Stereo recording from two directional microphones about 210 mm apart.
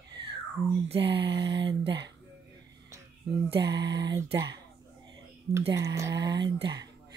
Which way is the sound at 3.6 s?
55° right (ahead or behind).